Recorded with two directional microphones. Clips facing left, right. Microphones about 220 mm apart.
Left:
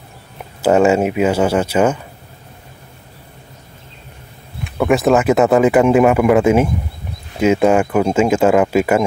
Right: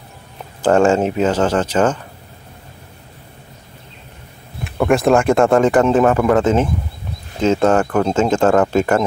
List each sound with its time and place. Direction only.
0.6 s speech: 10° left (ahead or behind)
4.6 s speech: centre (ahead or behind)